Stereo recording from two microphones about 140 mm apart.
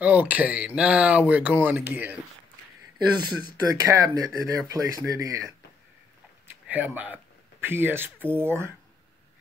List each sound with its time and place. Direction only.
0.0 s speech: 10° right (ahead or behind)
3.2 s speech: 30° right (ahead or behind)
6.4 s a sound: 15° right (ahead or behind)
7.6 s speech: 15° right (ahead or behind)